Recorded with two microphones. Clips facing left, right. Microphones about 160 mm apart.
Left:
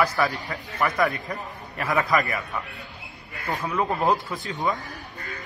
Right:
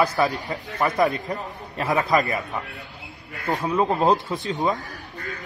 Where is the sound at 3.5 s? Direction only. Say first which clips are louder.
Right 4 dB; 20° right (ahead or behind).